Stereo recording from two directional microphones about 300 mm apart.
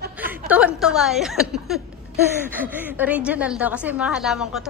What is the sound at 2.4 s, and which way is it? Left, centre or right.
A woman's voice, centre.